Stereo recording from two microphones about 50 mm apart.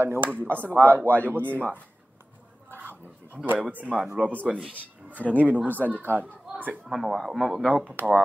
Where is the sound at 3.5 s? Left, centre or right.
Right.